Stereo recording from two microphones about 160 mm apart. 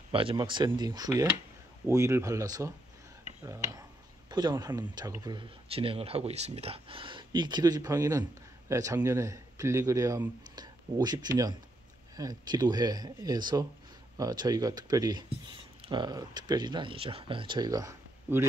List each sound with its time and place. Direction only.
0.1 s speech: 35° right (ahead or behind)
4.3 s speech: 25° right (ahead or behind)